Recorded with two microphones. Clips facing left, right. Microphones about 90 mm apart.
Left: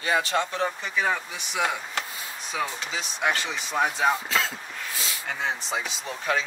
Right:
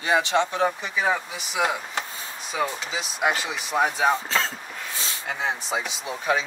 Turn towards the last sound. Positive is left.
turn(degrees=-10)  # may be behind; listen again after turning